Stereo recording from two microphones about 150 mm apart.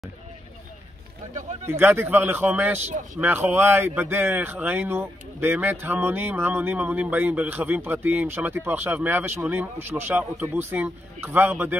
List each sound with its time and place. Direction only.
1.7 s speech: 15° right (ahead or behind)